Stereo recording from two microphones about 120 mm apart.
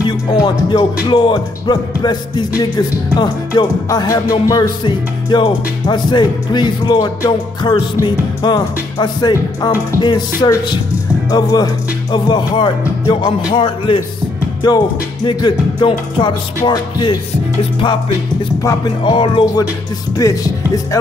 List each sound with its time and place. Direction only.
0.3 s music: 35° left (ahead or behind)
4.8 s music: 40° left (ahead or behind)
13.6 s a man's voice: 50° left (ahead or behind)
14.6 s music: 40° left (ahead or behind)
18.6 s speech: 25° left (ahead or behind)
19.1 s music: 40° left (ahead or behind)
20.2 s speech: 30° left (ahead or behind)